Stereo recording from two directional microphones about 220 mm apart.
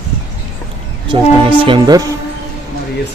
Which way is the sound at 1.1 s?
20° right (ahead or behind).